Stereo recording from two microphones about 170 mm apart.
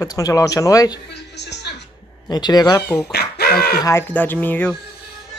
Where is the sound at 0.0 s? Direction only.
20° left (ahead or behind).